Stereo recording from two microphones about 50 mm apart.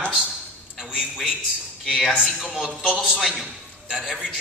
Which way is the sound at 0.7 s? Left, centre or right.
Centre.